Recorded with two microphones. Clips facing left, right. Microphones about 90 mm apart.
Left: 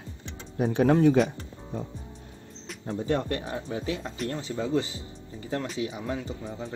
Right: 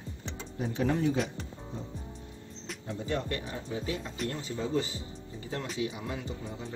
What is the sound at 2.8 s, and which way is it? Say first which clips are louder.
Speech: left 6 dB; 45° left (ahead or behind).